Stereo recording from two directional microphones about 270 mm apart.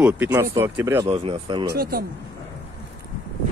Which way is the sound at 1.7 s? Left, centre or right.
Right.